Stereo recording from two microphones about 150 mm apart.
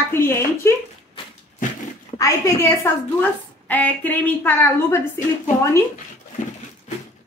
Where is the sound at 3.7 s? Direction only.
10° left (ahead or behind).